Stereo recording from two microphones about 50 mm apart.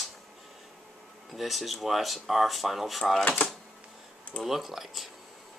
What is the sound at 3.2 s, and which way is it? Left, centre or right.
Speech, left.